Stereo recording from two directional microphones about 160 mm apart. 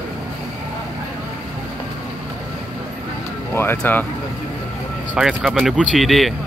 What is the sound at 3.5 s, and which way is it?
Speech, 15° left (ahead or behind).